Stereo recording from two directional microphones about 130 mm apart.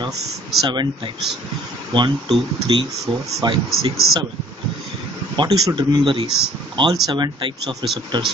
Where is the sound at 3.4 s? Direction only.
35° right (ahead or behind).